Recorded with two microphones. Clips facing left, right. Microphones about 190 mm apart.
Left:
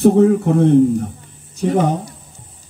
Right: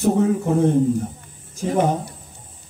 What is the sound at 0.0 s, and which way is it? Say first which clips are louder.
Speech: left 7 dB; 65° left (ahead or behind).